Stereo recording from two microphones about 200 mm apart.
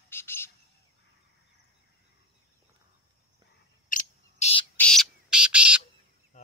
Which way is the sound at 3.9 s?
40° left (ahead or behind).